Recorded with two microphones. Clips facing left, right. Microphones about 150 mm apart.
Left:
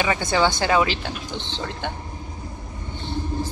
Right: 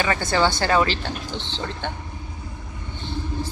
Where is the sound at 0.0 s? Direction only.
15° left (ahead or behind).